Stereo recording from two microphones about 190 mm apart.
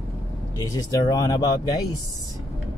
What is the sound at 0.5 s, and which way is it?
Speech, 15° left (ahead or behind).